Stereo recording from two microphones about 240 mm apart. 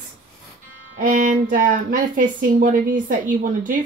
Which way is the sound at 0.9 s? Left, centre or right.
Right.